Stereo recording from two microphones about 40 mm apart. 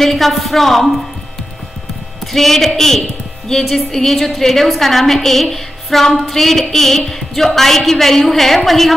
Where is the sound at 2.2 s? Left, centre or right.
Centre.